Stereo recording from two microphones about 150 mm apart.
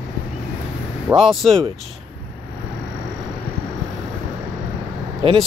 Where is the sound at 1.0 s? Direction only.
Centre (ahead or behind).